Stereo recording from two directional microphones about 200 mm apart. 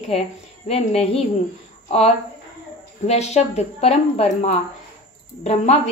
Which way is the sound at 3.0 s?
35° left (ahead or behind).